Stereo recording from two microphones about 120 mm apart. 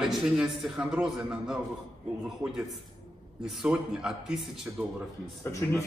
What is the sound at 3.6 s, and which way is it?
Speech, 5° right (ahead or behind).